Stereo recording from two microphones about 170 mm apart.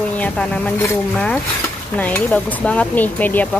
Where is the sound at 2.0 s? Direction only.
10° left (ahead or behind).